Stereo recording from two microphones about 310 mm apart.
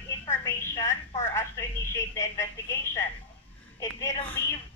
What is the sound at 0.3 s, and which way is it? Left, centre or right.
Telephone, centre.